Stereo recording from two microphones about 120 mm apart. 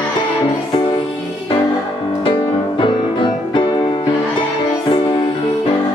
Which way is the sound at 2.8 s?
40° left (ahead or behind).